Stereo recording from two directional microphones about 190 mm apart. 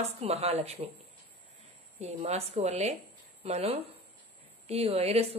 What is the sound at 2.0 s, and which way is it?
A woman's voice, 35° right (ahead or behind).